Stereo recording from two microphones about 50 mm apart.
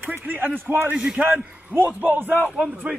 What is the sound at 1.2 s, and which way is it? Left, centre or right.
A man's voice, right.